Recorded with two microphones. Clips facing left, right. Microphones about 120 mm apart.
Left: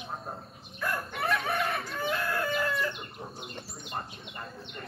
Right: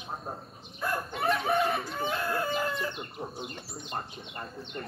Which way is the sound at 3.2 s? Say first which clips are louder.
Right 5 dB; 15° right (ahead or behind).